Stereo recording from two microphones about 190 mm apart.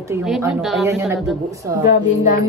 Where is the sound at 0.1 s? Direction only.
15° right (ahead or behind).